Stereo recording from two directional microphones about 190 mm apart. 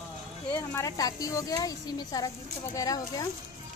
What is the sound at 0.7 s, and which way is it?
Speech, 20° left (ahead or behind).